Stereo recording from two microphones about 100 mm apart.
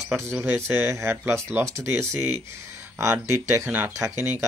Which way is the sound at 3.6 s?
15° right (ahead or behind).